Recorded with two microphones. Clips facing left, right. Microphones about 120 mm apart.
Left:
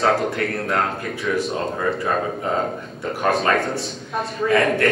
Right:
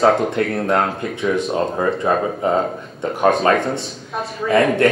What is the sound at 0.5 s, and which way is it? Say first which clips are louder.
Speech: right 6 dB; 25° right (ahead or behind).